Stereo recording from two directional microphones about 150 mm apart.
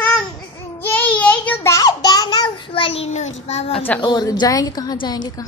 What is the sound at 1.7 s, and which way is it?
A child's voice, 25° left (ahead or behind).